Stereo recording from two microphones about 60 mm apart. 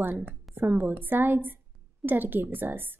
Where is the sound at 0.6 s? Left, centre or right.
Right.